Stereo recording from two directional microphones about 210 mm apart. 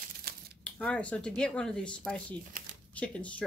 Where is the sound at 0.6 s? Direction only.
5° left (ahead or behind).